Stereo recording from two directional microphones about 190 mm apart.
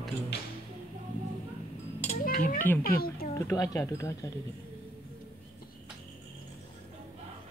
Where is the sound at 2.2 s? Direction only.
45° left (ahead or behind).